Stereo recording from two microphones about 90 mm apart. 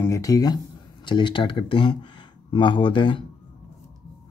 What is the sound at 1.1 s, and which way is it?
Speech, 65° left (ahead or behind).